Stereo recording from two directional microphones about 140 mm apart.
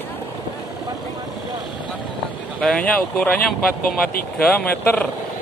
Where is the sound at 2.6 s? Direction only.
5° left (ahead or behind).